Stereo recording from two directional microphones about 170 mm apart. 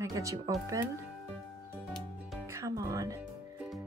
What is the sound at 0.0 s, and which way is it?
Speech, 20° right (ahead or behind).